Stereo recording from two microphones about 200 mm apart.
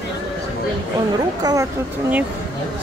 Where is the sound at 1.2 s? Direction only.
20° right (ahead or behind).